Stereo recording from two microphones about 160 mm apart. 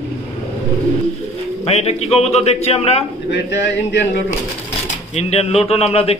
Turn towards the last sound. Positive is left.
turn(degrees=40)  # may be behind; listen again after turning